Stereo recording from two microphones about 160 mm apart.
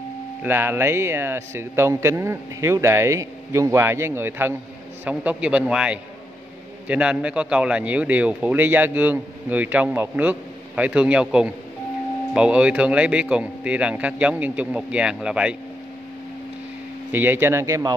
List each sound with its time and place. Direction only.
0.4 s speech: 15° right (ahead or behind)
17.1 s speech: 15° right (ahead or behind)